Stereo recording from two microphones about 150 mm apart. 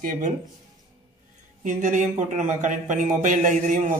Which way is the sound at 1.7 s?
55° right (ahead or behind).